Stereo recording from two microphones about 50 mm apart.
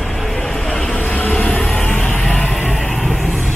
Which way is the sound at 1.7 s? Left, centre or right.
Left.